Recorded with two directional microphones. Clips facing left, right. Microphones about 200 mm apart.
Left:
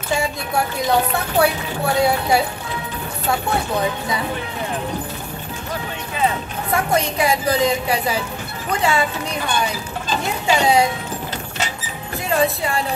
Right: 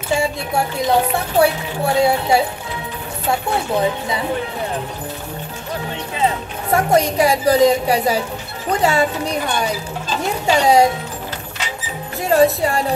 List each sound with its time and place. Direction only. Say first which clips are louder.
0.1 s speech: right 2 dB; 25° right (ahead or behind)
6.7 s a woman's voice: right 5 dB; 40° right (ahead or behind)
10.4 s a woman's voice: right 3 dB; 40° right (ahead or behind)
12.3 s a woman's voice: right 5 dB; 40° right (ahead or behind)